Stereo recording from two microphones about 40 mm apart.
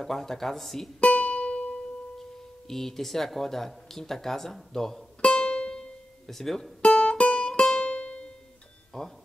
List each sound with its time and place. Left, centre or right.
0.0 s speech: centre
1.0 s music: left
2.7 s speech: centre
5.2 s music: left
6.2 s speech: centre
6.8 s music: left
8.9 s speech: centre